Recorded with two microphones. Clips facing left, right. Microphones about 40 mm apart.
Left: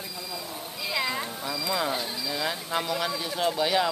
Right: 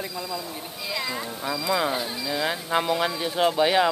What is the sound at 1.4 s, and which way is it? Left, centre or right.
Speech, centre.